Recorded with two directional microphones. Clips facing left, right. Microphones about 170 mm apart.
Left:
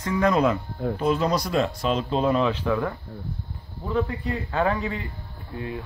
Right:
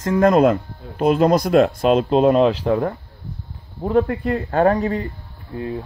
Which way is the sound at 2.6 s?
40° right (ahead or behind).